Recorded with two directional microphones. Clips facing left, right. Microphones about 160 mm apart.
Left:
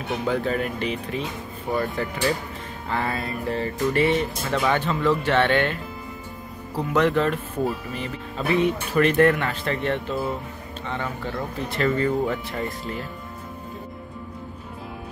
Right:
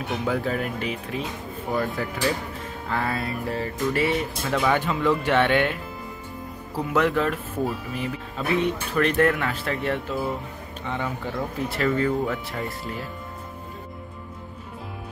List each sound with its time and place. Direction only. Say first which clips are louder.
0.2 s speech: left 2 dB; 5° right (ahead or behind)
6.8 s speech: left 2 dB; 5° right (ahead or behind)